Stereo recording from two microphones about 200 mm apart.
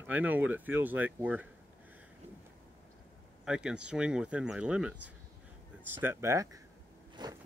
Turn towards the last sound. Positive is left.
turn(degrees=-20)  # may be behind; listen again after turning